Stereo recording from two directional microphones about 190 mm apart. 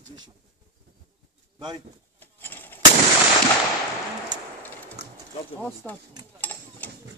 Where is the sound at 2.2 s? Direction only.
10° left (ahead or behind).